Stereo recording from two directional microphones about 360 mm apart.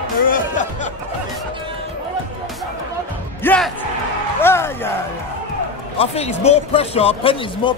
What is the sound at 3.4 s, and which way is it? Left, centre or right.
Music, centre.